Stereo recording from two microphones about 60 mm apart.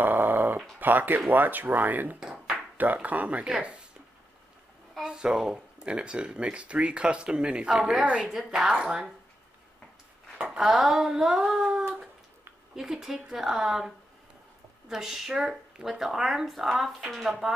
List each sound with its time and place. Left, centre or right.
0.0 s a sound: right
0.7 s speech: right
5.0 s speech: centre
8.0 s a woman's voice: centre
8.3 s speech: centre
10.4 s speech: centre
12.7 s speech: centre